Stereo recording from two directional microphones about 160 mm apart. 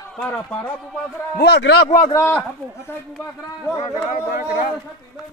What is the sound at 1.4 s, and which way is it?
Speech, 90° left.